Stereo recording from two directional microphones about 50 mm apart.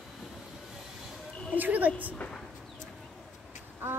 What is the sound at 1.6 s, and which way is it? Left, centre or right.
Speech, right.